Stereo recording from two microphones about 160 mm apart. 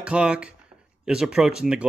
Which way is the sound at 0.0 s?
5° right (ahead or behind).